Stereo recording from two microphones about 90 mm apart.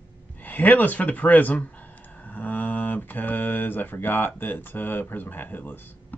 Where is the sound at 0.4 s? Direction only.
20° left (ahead or behind).